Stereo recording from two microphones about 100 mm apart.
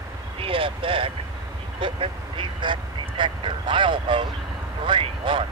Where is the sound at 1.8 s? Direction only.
60° right (ahead or behind).